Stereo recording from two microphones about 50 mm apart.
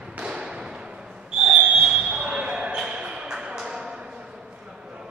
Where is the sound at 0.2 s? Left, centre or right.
Centre.